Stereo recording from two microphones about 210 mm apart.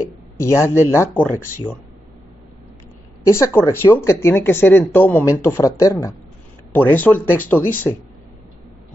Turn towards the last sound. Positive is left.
turn(degrees=10)  # may be behind; listen again after turning